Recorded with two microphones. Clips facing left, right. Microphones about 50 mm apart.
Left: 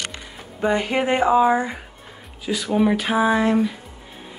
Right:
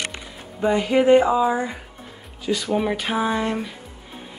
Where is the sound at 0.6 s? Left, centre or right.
Left.